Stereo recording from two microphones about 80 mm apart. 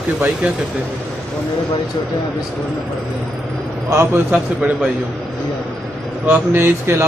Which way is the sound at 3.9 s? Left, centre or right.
Right.